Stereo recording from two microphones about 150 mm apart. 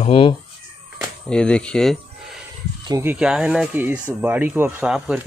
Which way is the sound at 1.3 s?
5° left (ahead or behind).